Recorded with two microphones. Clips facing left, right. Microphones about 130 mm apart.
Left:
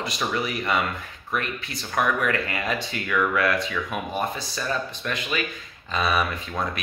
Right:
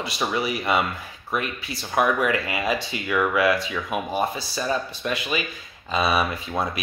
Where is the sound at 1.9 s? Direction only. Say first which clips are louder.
Right 2 dB; 10° right (ahead or behind).